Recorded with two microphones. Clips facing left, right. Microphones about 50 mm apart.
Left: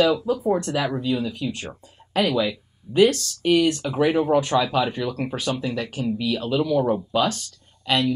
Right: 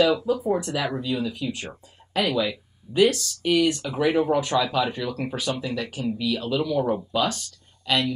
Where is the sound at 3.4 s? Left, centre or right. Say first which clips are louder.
Left 3 dB; centre.